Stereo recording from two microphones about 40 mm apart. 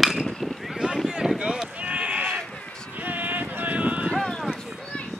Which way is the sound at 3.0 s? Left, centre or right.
Right.